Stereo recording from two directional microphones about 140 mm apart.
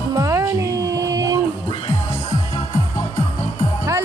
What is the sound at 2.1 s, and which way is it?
Music, 45° left (ahead or behind).